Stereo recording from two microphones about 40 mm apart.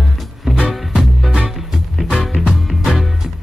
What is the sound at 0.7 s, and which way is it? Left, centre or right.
Music, centre.